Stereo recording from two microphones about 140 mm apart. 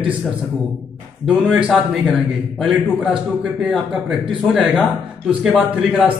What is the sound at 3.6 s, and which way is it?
A man's voice, 5° right (ahead or behind).